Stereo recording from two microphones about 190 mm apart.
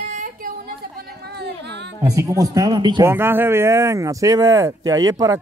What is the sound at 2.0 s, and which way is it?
Speech, 15° right (ahead or behind).